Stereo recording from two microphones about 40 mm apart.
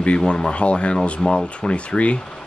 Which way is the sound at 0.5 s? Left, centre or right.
Left.